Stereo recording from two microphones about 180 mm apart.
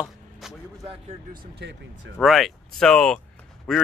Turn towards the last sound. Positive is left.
turn(degrees=0)  # may be behind; listen again after turning